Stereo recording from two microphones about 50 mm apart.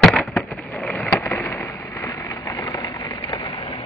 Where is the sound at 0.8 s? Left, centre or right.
Left.